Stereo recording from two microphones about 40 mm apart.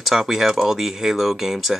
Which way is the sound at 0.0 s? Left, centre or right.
Centre.